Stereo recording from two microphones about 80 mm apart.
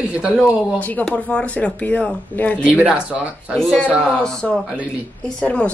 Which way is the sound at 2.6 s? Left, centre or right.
Centre.